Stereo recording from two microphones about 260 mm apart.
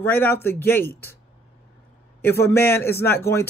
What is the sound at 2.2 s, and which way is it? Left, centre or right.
A man's voice, centre.